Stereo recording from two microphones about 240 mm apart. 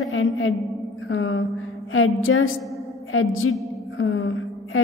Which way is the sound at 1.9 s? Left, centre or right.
Left.